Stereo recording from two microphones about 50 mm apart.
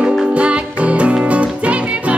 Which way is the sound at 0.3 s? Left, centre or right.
Right.